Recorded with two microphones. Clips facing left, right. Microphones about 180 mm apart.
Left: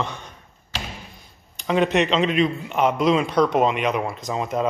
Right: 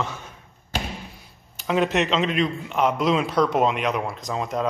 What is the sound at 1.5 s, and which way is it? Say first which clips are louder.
A man's voice: left 2 dB; centre (ahead or behind).